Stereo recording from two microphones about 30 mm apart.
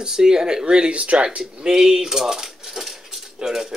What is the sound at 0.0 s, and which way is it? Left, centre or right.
Speech, right.